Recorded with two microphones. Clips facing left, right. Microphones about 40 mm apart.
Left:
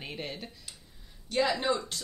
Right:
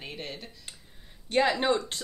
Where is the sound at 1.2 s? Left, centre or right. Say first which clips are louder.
Right 3 dB; right.